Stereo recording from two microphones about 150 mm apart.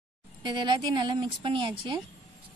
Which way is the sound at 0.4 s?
30° right (ahead or behind).